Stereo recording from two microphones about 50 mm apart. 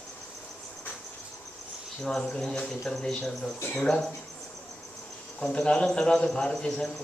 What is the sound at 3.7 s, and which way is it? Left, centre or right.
Speech, centre.